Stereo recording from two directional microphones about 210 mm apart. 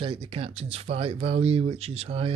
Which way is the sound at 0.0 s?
25° right (ahead or behind).